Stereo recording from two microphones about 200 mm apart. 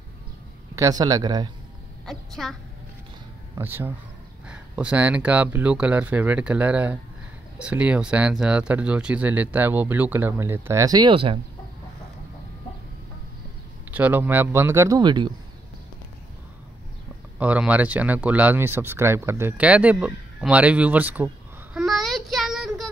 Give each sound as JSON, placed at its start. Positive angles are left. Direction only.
{"t": 0.7, "sound": "a man's voice", "side_deg": -15}
{"t": 2.0, "sound": "a woman's voice", "side_deg": 0}
{"t": 3.5, "sound": "speech", "side_deg": -10}
{"t": 13.9, "sound": "speech", "side_deg": -10}
{"t": 17.4, "sound": "speech", "side_deg": -5}
{"t": 21.7, "sound": "child singing", "side_deg": 0}